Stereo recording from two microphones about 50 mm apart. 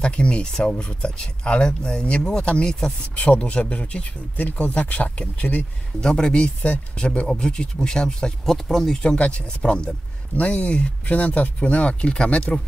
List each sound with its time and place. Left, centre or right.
0.0 s speech: left
6.0 s speech: centre
8.5 s speech: centre
9.0 s speech: left